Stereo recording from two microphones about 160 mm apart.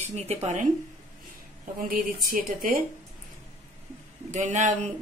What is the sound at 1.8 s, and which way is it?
Speech, 60° right (ahead or behind).